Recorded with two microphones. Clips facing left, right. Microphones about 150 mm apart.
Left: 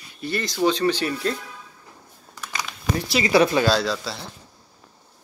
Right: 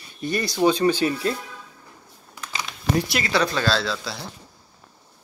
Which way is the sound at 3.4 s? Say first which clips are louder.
Left 3 dB; 15° left (ahead or behind).